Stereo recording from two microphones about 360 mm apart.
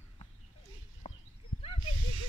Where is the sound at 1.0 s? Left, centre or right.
Centre.